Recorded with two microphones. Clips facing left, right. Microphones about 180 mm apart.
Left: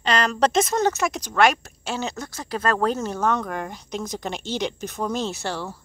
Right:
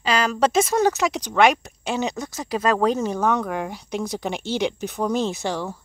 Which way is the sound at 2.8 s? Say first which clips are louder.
Right 2 dB; 15° right (ahead or behind).